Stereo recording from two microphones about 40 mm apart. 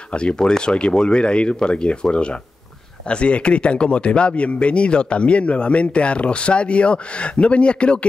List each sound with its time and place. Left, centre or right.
0.1 s speech: left